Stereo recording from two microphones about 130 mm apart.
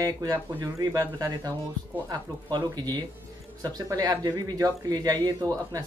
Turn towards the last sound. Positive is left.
turn(degrees=-30)  # may be behind; listen again after turning